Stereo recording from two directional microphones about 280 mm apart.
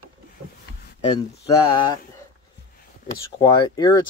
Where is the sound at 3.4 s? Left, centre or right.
Centre.